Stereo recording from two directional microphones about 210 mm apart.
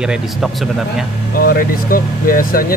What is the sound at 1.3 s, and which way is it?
Speech, 45° left (ahead or behind).